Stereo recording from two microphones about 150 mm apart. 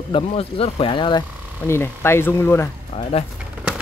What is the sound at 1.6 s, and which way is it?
Speech, 15° left (ahead or behind).